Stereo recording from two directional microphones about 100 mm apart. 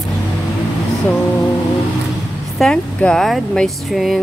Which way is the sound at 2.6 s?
10° left (ahead or behind).